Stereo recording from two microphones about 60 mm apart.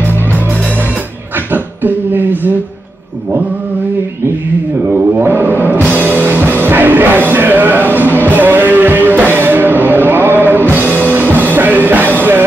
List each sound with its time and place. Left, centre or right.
1.5 s beatboxing: right
4.9 s music: right